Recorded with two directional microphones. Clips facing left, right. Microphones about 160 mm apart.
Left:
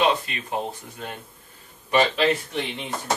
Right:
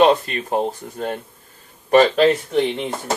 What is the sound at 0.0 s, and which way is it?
Speech, 45° right (ahead or behind).